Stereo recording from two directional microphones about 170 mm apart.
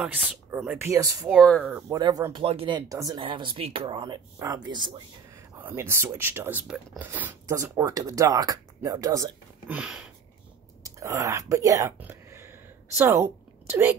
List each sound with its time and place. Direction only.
0.0 s speech: 5° right (ahead or behind)
1.3 s speech: 5° left (ahead or behind)
1.7 s speech: 10° right (ahead or behind)
2.0 s speech: 20° right (ahead or behind)
2.4 s speech: 35° right (ahead or behind)
2.9 s speech: 20° right (ahead or behind)
5.6 s speech: 10° right (ahead or behind)
9.7 s speech: 5° right (ahead or behind)
10.8 s whispering: 20° right (ahead or behind)